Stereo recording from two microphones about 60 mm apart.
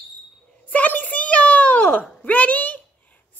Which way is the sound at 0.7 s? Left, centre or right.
Left.